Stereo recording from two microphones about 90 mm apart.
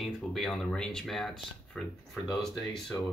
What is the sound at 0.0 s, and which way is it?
Speech, centre (ahead or behind).